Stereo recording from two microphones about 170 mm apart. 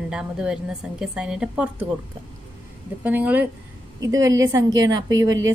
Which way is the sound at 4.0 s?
20° right (ahead or behind).